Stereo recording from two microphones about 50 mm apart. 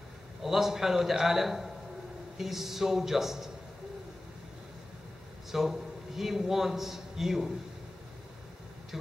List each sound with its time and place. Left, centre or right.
0.4 s a man's voice: centre
5.5 s a man's voice: centre